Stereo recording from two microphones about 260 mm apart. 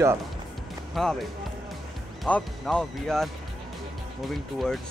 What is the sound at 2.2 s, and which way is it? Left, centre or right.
Speech, centre.